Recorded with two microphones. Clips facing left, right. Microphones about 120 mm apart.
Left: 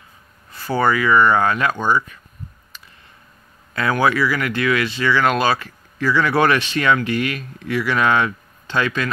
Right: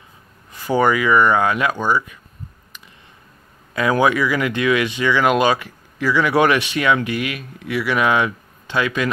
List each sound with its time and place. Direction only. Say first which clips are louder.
0.5 s speech: right 2 dB; 15° right (ahead or behind)
3.9 s speech: right 1 dB; 15° right (ahead or behind)